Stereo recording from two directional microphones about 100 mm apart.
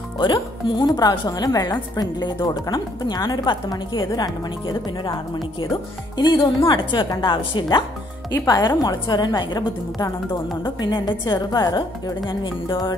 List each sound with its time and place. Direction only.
0.2 s a woman's voice: 55° left (ahead or behind)
2.4 s speech: 40° left (ahead or behind)
4.0 s speech: 35° left (ahead or behind)
5.7 s a woman's voice: 50° left (ahead or behind)
12.3 s a woman's voice: 55° left (ahead or behind)